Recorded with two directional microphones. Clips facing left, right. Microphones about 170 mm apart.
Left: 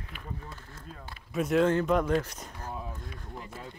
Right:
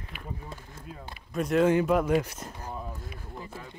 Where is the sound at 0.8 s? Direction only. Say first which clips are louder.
Right 3 dB; 15° right (ahead or behind).